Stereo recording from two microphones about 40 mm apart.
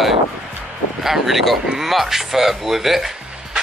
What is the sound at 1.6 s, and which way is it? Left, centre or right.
Speech, centre.